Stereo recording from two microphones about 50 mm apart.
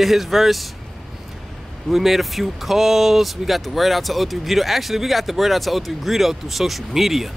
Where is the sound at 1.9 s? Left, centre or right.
Centre.